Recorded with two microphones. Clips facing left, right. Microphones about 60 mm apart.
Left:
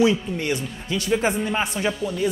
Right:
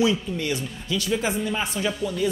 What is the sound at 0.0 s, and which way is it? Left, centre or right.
A woman's voice, left.